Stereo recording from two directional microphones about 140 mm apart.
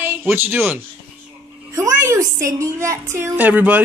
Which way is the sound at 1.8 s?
20° right (ahead or behind).